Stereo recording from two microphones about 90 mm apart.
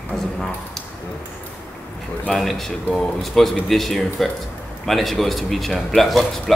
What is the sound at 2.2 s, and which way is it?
A man's voice, 5° left (ahead or behind).